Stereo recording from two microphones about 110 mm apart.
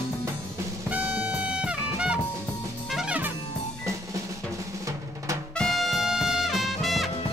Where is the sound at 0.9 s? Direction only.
15° right (ahead or behind).